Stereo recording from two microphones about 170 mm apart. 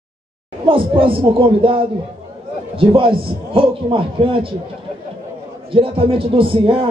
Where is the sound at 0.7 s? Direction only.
30° right (ahead or behind).